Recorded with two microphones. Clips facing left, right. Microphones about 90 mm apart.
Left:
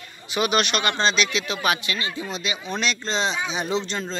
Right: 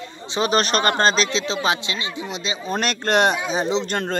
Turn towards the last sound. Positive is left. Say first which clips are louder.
# right 4 dB
turn(degrees=-55)  # may be behind; listen again after turning